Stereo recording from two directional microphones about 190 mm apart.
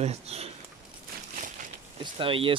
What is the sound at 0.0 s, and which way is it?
Speech, 35° right (ahead or behind).